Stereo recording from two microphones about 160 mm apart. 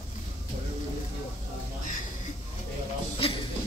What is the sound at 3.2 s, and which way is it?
Music, 35° left (ahead or behind).